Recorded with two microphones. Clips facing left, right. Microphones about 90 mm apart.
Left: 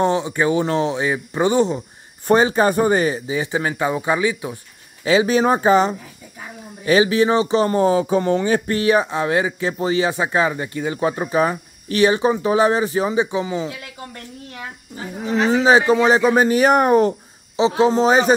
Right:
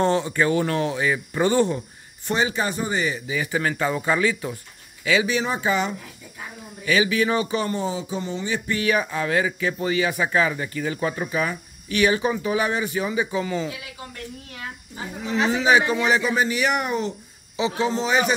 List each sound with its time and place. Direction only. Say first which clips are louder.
0.0 s speech: left 2 dB; 15° left (ahead or behind)
2.2 s speech: left 8 dB; 45° left (ahead or behind); by 4.6 s 15° left (ahead or behind)
5.0 s speech: left 6 dB; 35° left (ahead or behind)
7.7 s a sound: left 10 dB; 55° left (ahead or behind)
8.7 s speech: left 2 dB; 30° left (ahead or behind)
15.1 s speech: left 5 dB; 40° left (ahead or behind)
17.6 s speech: left 8 dB; 35° left (ahead or behind)